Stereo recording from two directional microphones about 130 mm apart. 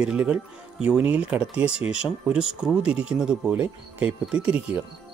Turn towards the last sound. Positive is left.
turn(degrees=-10)  # may be behind; listen again after turning